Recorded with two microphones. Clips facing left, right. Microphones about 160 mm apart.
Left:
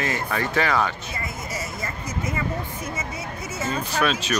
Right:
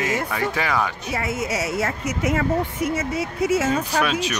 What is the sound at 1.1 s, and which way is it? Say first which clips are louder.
Speech: right 8 dB; 85° right.